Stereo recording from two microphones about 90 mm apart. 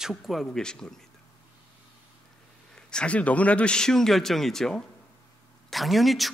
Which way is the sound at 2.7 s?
10° left (ahead or behind).